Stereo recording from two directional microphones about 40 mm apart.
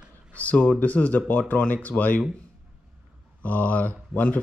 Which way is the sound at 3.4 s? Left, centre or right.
Left.